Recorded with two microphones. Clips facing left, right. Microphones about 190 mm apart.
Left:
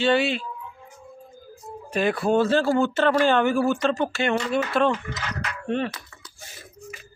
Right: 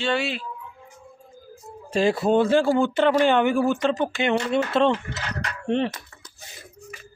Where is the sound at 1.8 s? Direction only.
25° right (ahead or behind).